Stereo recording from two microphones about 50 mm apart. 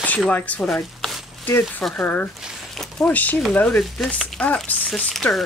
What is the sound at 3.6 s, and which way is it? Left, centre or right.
Speech, centre.